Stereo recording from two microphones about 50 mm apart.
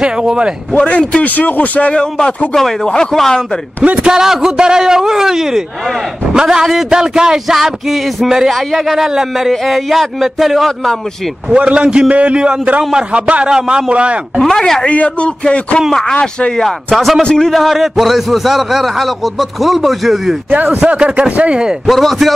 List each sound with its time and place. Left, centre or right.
0.0 s speech: centre
0.7 s a man's voice: left
2.0 s speech: centre
3.8 s a man's voice: right
4.1 s speech: centre
7.5 s a man's voice: centre
11.5 s a man's voice: right
14.6 s speech: centre
14.9 s a man's voice: left
16.9 s a man's voice: centre
17.2 s a man's voice: centre
17.5 s a man's voice: centre
20.6 s a man's voice: centre
21.8 s a man's voice: centre